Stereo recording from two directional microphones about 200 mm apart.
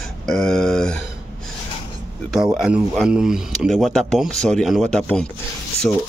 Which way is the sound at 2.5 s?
5° right (ahead or behind).